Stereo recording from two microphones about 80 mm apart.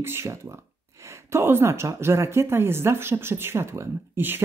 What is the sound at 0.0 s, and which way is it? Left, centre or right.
Speech, right.